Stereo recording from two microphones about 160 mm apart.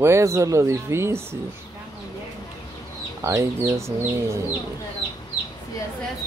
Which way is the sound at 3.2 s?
20° right (ahead or behind).